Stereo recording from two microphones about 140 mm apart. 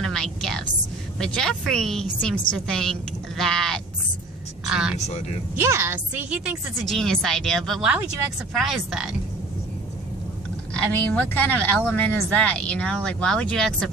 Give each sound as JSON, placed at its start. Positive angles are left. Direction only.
{"t": 0.0, "sound": "a sound", "side_deg": 5}
{"t": 1.2, "sound": "a woman's voice", "side_deg": 5}
{"t": 5.6, "sound": "a woman's voice", "side_deg": -20}
{"t": 6.8, "sound": "a woman's voice", "side_deg": 0}
{"t": 10.7, "sound": "speech", "side_deg": 10}